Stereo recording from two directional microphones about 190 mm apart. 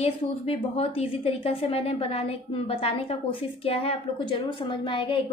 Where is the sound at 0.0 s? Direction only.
30° left (ahead or behind).